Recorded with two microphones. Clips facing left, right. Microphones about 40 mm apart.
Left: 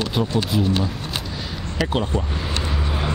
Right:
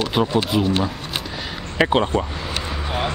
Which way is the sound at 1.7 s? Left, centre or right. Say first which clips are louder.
Right 5 dB; right.